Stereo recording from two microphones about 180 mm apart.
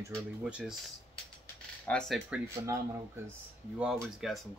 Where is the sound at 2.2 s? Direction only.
15° right (ahead or behind).